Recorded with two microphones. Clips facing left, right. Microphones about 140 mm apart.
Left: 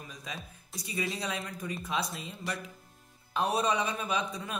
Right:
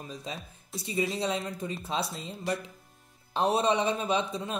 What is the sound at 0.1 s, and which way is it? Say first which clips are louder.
A man's voice: right 4 dB; 30° right (ahead or behind).